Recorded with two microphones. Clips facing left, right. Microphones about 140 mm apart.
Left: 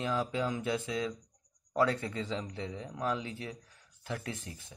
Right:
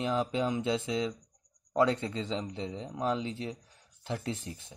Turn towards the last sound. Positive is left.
turn(degrees=-25)  # may be behind; listen again after turning